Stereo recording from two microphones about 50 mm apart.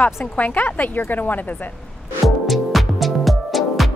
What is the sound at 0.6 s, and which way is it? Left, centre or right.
Speech, left.